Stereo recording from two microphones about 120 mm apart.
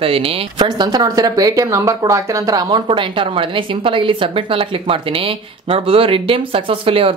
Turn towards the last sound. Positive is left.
turn(degrees=-50)  # may be behind; listen again after turning